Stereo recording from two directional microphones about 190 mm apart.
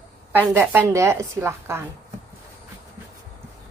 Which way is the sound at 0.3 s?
10° right (ahead or behind).